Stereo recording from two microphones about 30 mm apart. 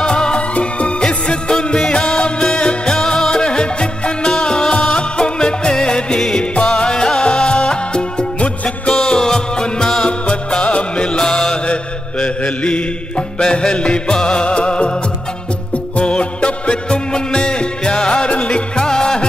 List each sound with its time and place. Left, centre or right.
0.0 s music: left
0.6 s music: left; by 10.0 s centre
10.6 s music: left
13.4 s music: left
16.0 s music: left
18.9 s music: left